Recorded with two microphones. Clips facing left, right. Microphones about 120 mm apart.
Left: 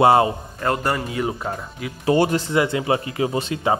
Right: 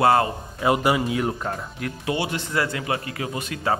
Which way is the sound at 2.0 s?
40° left (ahead or behind).